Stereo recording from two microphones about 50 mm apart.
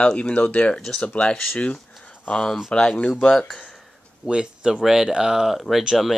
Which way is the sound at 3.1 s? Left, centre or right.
Centre.